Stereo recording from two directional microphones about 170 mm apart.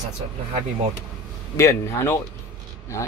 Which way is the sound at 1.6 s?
15° left (ahead or behind).